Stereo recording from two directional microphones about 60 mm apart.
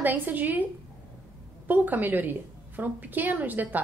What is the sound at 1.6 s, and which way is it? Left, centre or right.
A woman's voice, right.